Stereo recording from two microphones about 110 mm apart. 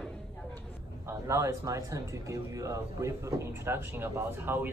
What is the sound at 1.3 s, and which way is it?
Speech, 25° right (ahead or behind).